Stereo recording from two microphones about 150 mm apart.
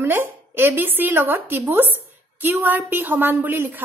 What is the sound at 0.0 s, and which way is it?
A woman's voice, 15° right (ahead or behind).